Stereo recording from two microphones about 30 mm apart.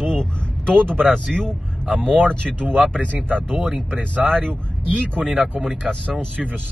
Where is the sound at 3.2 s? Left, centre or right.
Right.